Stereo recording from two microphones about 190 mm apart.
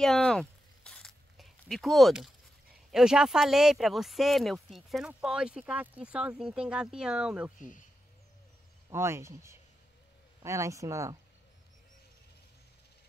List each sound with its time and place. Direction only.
0.0 s a sound: 5° left (ahead or behind)
2.9 s speech: 5° right (ahead or behind)
8.9 s speech: 15° right (ahead or behind)